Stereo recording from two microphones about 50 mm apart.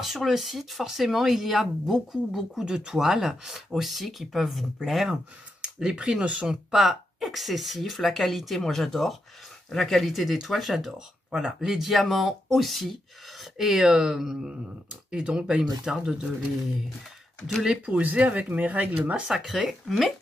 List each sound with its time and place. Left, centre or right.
0.0 s speech: centre
5.6 s speech: centre
6.4 s speech: centre
11.0 s speech: centre
17.5 s speech: centre
17.8 s speech: right
19.2 s speech: centre